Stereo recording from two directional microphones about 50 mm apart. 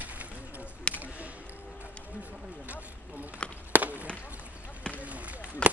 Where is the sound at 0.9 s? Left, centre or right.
Left.